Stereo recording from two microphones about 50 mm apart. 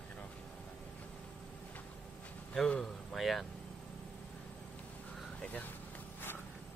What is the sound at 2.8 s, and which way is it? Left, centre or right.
Speech, centre.